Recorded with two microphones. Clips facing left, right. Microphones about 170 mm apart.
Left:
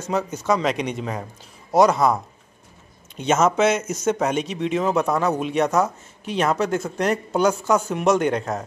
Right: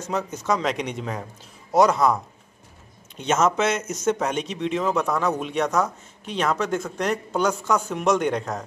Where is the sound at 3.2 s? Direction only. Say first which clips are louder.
Left 3 dB; 5° left (ahead or behind).